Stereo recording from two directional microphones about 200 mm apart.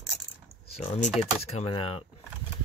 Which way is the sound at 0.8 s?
35° left (ahead or behind).